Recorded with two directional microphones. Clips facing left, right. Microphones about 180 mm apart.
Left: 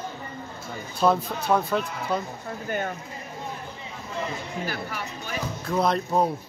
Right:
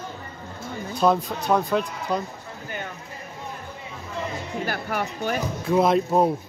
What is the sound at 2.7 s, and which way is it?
Speech, 50° left (ahead or behind).